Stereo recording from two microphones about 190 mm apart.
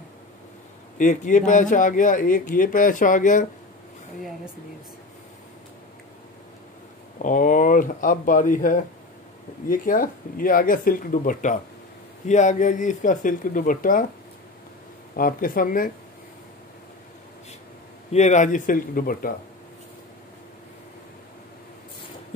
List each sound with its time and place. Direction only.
0.9 s a man's voice: 40° left (ahead or behind)
7.2 s a man's voice: 45° left (ahead or behind)
15.1 s a man's voice: 50° left (ahead or behind)
18.1 s a man's voice: 40° left (ahead or behind)